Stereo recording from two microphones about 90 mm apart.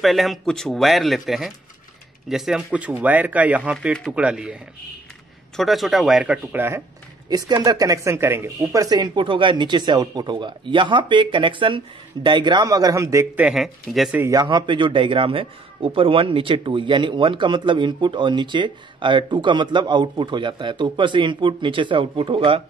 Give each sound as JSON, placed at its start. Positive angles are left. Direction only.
{"t": 0.0, "sound": "speech", "side_deg": 0}
{"t": 2.9, "sound": "speech", "side_deg": -20}
{"t": 5.6, "sound": "speech", "side_deg": 0}
{"t": 7.2, "sound": "speech", "side_deg": -50}
{"t": 8.7, "sound": "a man's voice", "side_deg": -45}
{"t": 12.6, "sound": "speech", "side_deg": -45}
{"t": 13.6, "sound": "speech", "side_deg": 0}
{"t": 14.3, "sound": "a man's voice", "side_deg": -55}